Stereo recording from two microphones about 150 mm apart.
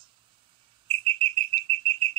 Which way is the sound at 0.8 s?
35° right (ahead or behind).